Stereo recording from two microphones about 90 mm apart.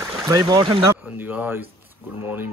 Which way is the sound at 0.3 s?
50° right (ahead or behind).